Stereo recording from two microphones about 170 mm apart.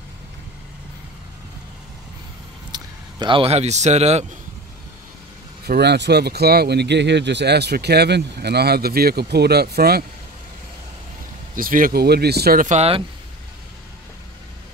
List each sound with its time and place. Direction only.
2.7 s speech: 30° right (ahead or behind)
5.7 s speech: 80° right
11.5 s speech: 55° right (ahead or behind)
12.6 s speech: 40° right (ahead or behind)